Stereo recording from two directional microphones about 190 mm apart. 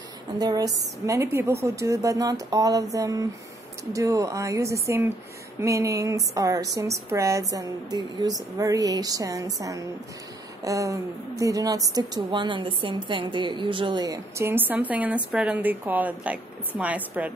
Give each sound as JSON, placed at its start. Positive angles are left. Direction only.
{"t": 0.4, "sound": "a woman's voice", "side_deg": -20}